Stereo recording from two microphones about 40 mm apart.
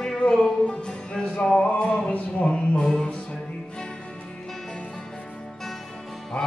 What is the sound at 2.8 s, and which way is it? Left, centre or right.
Music, left.